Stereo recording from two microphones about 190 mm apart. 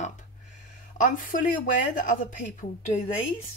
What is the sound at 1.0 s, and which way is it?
Speech, 45° left (ahead or behind).